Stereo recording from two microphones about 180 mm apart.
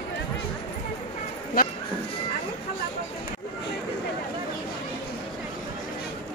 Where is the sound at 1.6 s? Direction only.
55° left (ahead or behind).